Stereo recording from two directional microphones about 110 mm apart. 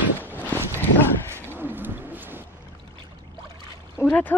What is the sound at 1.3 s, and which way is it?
Wild animals, 20° right (ahead or behind).